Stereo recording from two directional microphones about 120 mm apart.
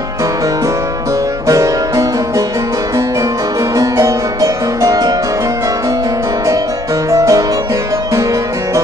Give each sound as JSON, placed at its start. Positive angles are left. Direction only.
{"t": 1.5, "sound": "music", "side_deg": -25}
{"t": 3.7, "sound": "music", "side_deg": -25}
{"t": 7.1, "sound": "music", "side_deg": -25}